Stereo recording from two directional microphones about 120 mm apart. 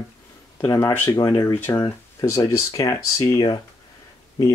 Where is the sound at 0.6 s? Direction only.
20° left (ahead or behind).